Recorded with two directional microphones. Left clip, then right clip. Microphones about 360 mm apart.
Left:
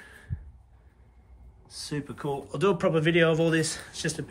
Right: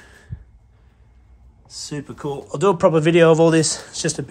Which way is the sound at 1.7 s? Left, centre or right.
Centre.